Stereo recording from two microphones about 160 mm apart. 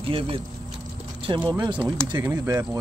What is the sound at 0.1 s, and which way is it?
Speech, 35° right (ahead or behind).